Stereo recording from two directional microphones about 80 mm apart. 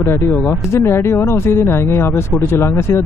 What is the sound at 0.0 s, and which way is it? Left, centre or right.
Speech, left.